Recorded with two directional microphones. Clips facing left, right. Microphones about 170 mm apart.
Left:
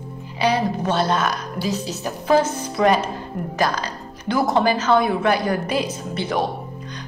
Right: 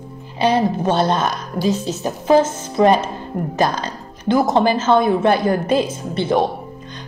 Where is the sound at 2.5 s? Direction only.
25° right (ahead or behind).